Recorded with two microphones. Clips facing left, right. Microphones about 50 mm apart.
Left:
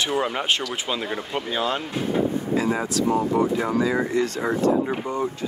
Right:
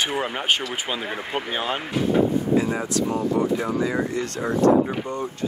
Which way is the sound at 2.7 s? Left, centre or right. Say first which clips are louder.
Left 2 dB; centre.